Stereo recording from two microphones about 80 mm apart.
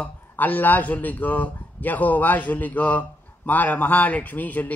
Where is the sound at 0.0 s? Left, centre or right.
Left.